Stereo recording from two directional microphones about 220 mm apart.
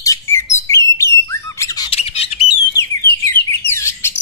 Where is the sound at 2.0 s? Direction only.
25° left (ahead or behind).